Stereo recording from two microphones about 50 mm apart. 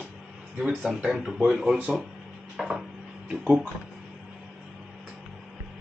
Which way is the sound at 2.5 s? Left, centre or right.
Centre.